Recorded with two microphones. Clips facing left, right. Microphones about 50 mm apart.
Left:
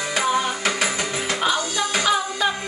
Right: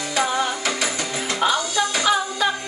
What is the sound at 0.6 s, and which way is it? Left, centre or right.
Music, left.